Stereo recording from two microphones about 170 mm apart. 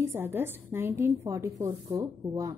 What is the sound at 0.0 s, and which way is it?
A woman's voice, 15° right (ahead or behind).